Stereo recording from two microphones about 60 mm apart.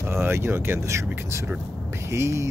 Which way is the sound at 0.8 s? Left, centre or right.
Right.